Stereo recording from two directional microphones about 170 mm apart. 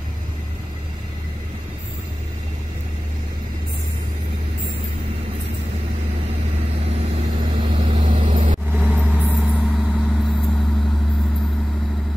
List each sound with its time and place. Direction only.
7.2 s vehicle: 30° right (ahead or behind)
8.0 s vehicle: 50° right (ahead or behind)
8.7 s vehicle: 10° right (ahead or behind)